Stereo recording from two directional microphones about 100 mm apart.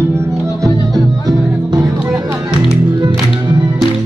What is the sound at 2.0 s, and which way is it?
Music, 20° right (ahead or behind).